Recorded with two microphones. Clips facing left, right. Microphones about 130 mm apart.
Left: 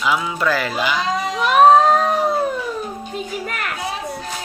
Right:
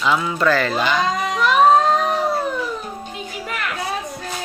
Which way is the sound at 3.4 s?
45° left (ahead or behind).